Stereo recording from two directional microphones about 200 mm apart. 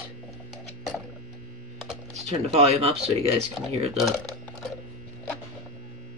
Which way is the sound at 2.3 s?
30° right (ahead or behind).